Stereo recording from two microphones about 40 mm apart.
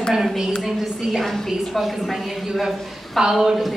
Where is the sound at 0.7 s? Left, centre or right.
Centre.